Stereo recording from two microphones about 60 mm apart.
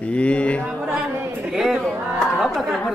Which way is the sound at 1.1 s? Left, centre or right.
Right.